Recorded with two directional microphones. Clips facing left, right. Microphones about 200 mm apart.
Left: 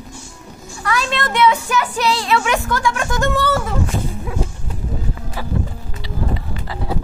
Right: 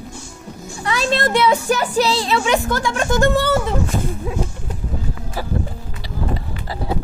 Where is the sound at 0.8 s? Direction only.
30° right (ahead or behind).